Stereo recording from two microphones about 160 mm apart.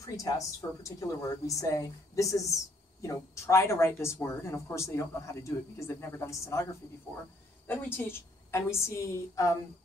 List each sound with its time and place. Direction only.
0.0 s a woman's voice: 20° left (ahead or behind)